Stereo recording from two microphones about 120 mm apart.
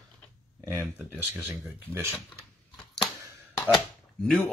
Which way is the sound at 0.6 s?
20° right (ahead or behind).